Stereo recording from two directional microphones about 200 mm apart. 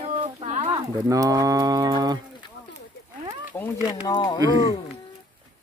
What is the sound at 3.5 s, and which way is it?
Speech, 15° left (ahead or behind).